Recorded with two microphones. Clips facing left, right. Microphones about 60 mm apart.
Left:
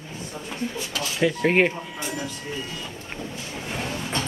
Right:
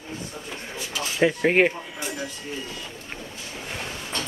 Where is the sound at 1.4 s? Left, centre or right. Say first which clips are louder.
Left 1 dB; centre.